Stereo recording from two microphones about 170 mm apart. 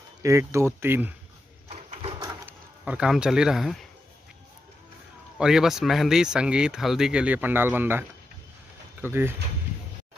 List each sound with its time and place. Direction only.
0.2 s speech: 15° right (ahead or behind)
1.7 s printer: 35° right (ahead or behind)
2.1 s bird: 20° right (ahead or behind)
2.8 s speech: 5° right (ahead or behind)
5.4 s speech: 5° right (ahead or behind)
9.0 s speech: 10° right (ahead or behind)